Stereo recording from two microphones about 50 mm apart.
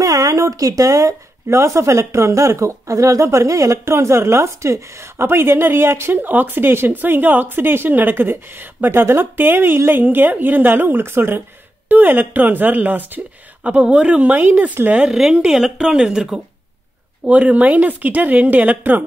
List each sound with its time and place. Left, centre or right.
0.4 s speech: right
1.5 s speech: right
5.2 s a woman's voice: right
6.2 s a woman's voice: right
11.9 s speech: right
13.7 s speech: right
15.0 s speech: centre
17.2 s speech: right